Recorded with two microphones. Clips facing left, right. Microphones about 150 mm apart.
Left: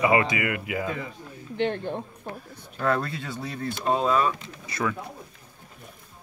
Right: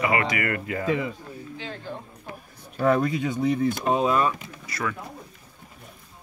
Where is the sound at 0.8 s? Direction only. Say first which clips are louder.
Right 6 dB; 90° right.